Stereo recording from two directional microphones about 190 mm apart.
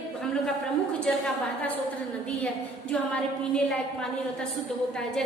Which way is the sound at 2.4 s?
5° left (ahead or behind).